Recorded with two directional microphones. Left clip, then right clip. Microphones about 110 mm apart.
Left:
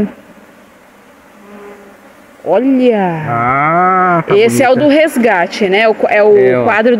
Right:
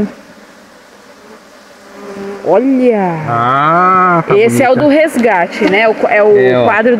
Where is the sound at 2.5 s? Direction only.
25° left (ahead or behind).